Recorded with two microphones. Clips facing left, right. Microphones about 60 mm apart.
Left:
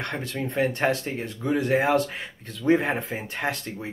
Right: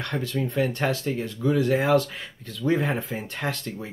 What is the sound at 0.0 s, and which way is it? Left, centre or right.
Speech, left.